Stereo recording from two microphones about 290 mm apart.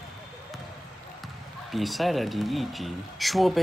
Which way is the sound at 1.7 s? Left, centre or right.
Centre.